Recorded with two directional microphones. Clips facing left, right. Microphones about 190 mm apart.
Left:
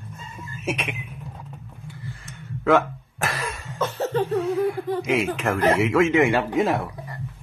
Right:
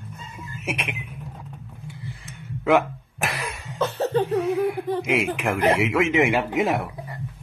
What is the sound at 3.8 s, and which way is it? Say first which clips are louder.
Laughter: right 2 dB; 30° right (ahead or behind).